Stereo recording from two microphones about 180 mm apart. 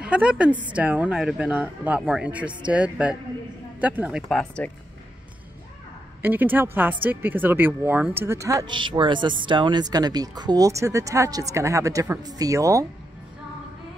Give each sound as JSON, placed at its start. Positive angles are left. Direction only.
{"t": 0.0, "sound": "speech", "side_deg": -5}
{"t": 6.2, "sound": "speech", "side_deg": -10}